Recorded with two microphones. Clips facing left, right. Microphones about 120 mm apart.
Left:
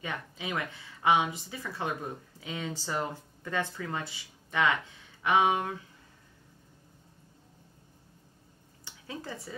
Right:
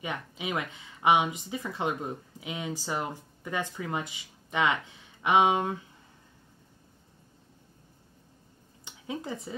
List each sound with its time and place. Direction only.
0.0 s speech: 15° right (ahead or behind)
8.8 s speech: 20° right (ahead or behind)